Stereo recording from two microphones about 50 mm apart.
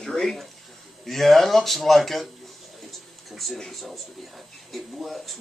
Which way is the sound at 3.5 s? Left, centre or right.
Centre.